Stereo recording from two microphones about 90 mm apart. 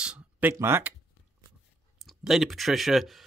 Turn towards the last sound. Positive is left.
turn(degrees=0)  # may be behind; listen again after turning